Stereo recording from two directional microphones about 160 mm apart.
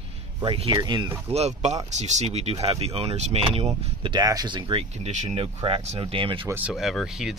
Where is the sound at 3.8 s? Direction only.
30° right (ahead or behind).